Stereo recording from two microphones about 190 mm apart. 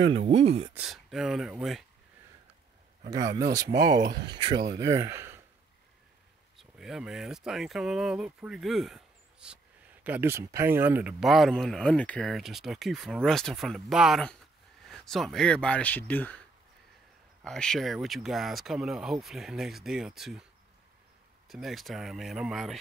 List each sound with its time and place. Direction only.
0.2 s speech: 35° right (ahead or behind)
0.7 s speech: centre (ahead or behind)
3.1 s speech: 20° right (ahead or behind)
6.5 s speech: centre (ahead or behind)
21.5 s speech: centre (ahead or behind)